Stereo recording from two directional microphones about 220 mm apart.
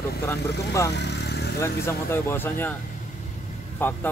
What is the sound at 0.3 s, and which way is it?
Speech, 15° left (ahead or behind).